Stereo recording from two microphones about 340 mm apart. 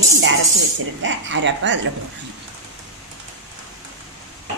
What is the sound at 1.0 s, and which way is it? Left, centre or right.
Speech, right.